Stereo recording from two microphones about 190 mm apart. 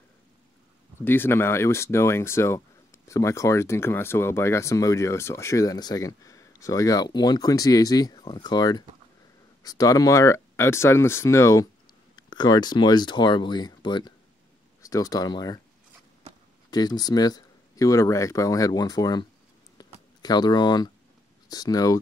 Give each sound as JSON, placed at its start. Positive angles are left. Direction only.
{"t": 1.0, "sound": "speech", "side_deg": 10}
{"t": 16.7, "sound": "speech", "side_deg": 20}
{"t": 19.8, "sound": "a sound", "side_deg": 20}
{"t": 21.5, "sound": "speech", "side_deg": 20}